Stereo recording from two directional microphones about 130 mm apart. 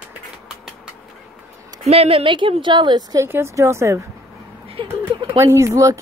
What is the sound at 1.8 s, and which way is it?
A woman's voice, 55° right (ahead or behind).